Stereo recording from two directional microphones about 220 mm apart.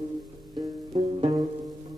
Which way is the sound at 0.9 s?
25° right (ahead or behind).